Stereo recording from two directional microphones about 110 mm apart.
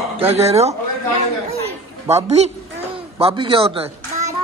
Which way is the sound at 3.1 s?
60° right (ahead or behind).